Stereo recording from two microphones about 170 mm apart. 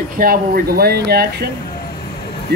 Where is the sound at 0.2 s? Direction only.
60° right (ahead or behind).